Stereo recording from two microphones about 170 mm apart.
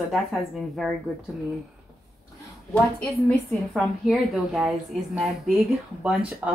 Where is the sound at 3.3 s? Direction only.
Centre (ahead or behind).